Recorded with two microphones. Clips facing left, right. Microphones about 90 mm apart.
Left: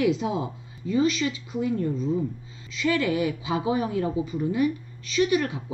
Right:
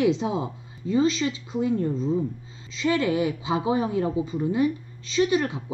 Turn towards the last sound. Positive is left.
turn(degrees=-25)  # may be behind; listen again after turning